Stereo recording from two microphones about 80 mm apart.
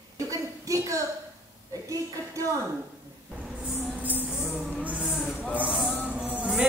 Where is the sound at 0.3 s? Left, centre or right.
Right.